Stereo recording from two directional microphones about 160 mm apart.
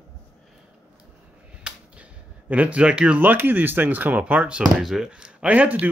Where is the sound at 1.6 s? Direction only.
5° right (ahead or behind).